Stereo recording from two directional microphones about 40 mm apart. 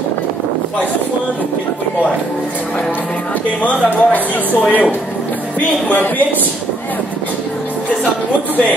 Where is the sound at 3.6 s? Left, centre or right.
Left.